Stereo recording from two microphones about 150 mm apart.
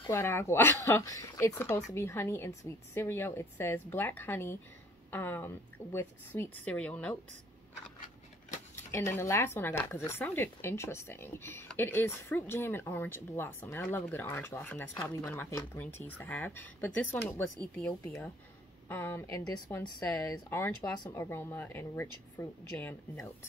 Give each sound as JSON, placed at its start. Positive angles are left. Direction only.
{"t": 0.1, "sound": "speech", "side_deg": 15}
{"t": 8.9, "sound": "speech", "side_deg": 20}